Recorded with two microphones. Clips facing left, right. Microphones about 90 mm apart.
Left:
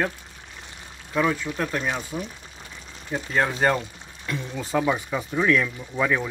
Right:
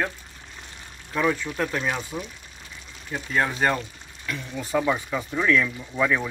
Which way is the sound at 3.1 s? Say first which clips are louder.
Left 1 dB; 20° left (ahead or behind).